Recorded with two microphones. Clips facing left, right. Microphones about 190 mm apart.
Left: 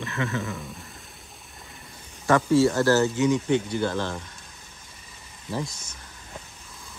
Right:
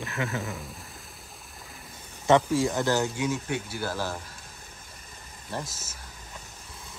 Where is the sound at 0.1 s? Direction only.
Centre (ahead or behind).